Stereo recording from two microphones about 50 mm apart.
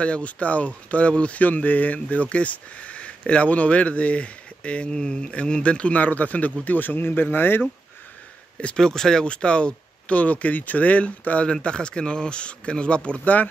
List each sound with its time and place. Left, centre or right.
0.0 s speech: left
8.7 s speech: centre
9.2 s speech: left